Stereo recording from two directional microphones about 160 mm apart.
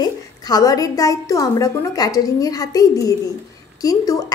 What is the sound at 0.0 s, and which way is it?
A woman's voice, 25° left (ahead or behind).